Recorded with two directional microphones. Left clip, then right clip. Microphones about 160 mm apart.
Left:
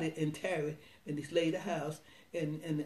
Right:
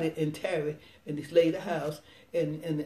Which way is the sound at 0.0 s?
20° left (ahead or behind).